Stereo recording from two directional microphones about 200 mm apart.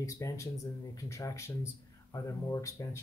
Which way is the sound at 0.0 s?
15° left (ahead or behind).